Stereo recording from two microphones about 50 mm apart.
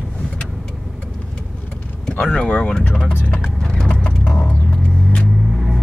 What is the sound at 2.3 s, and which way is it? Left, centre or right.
Speech, centre.